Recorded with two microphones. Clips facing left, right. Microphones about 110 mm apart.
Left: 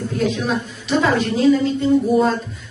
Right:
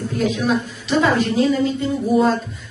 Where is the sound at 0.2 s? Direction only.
Centre (ahead or behind).